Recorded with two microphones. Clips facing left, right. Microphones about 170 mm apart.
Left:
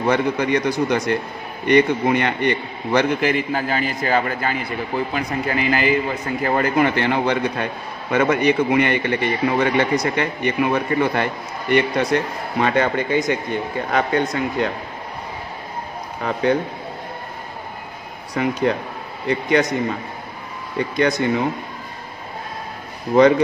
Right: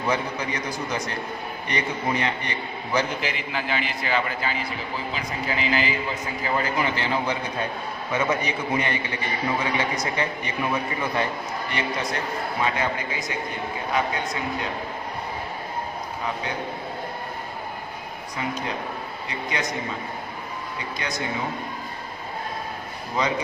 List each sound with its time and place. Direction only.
0.1 s a man's voice: 65° left (ahead or behind)
18.3 s a man's voice: 65° left (ahead or behind)
23.1 s a man's voice: 65° left (ahead or behind)